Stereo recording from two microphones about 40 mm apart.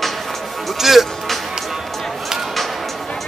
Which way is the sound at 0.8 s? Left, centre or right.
Centre.